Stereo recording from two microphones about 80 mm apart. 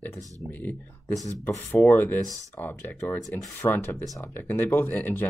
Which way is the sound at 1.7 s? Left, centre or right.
Left.